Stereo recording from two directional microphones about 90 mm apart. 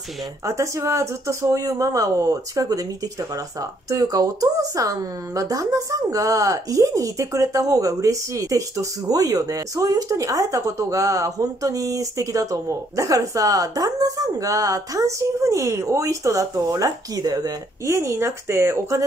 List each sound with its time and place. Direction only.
0.5 s speech: 35° right (ahead or behind)
17.8 s speech: 30° right (ahead or behind)